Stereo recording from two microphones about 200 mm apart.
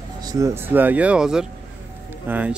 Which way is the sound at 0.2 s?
15° right (ahead or behind).